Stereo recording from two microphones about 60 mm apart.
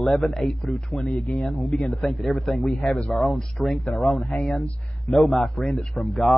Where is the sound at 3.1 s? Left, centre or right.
Centre.